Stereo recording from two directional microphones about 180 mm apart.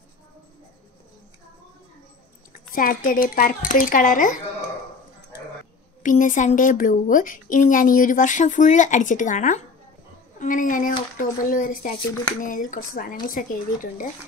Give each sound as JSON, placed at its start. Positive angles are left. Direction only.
{"t": 2.7, "sound": "a woman's voice", "side_deg": 50}
{"t": 6.0, "sound": "a woman's voice", "side_deg": 45}